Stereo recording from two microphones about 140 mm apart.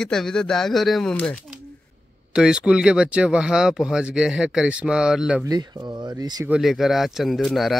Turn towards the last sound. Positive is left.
turn(degrees=0)  # may be behind; listen again after turning